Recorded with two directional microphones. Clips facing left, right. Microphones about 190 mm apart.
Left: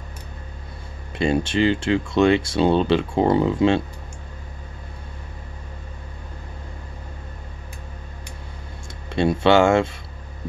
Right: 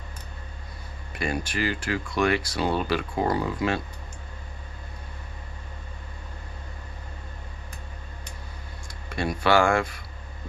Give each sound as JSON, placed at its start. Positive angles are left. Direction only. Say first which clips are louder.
{"t": 1.1, "sound": "speech", "louder": "left 9 dB", "side_deg": 25}
{"t": 9.1, "sound": "speech", "louder": "left 6 dB", "side_deg": 25}